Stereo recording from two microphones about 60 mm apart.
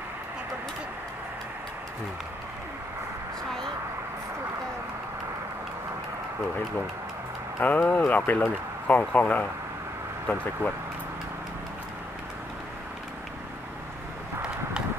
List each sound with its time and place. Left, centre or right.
7.6 s speech: left